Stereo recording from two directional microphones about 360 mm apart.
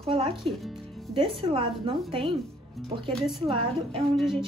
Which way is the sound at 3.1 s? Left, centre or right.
Centre.